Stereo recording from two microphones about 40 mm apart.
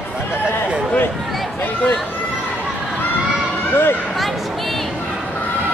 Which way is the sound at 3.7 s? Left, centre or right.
Left.